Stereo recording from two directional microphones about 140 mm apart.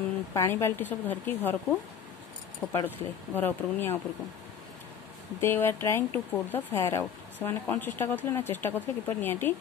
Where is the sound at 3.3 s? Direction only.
15° left (ahead or behind).